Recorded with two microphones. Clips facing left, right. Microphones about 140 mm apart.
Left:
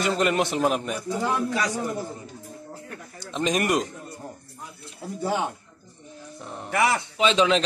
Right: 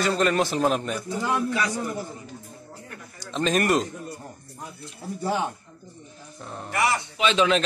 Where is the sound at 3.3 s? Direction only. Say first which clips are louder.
Right 1 dB; 10° left (ahead or behind).